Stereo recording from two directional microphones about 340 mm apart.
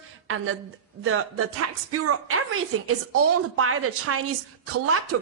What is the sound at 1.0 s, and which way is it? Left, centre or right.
A woman's voice, right.